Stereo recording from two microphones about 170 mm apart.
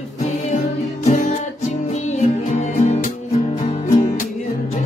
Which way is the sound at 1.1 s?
45° left (ahead or behind).